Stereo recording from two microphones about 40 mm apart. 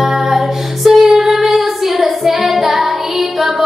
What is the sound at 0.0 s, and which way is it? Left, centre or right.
Music, centre.